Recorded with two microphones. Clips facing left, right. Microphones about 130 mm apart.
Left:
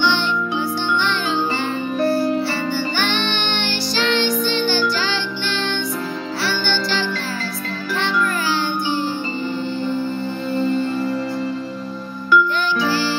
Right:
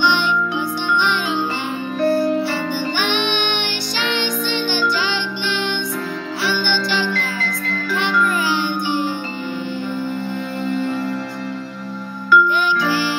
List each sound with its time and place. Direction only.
0.0 s music: 15° right (ahead or behind)